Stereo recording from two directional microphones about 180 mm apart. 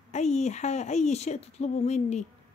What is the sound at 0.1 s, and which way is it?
Speech, 40° left (ahead or behind).